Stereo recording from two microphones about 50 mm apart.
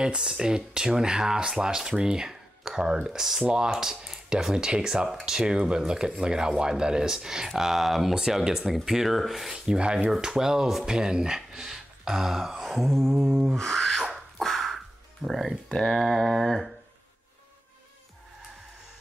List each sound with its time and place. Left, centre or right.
0.0 s speech: centre
9.8 s speech: right; by 14.0 s centre
14.4 s a sound: centre
15.2 s speech: centre